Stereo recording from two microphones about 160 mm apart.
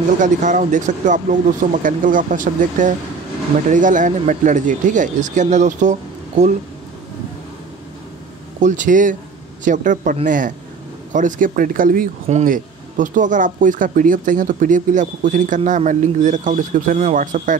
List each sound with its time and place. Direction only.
0.2 s speech: 50° right (ahead or behind)
8.5 s speech: 50° right (ahead or behind)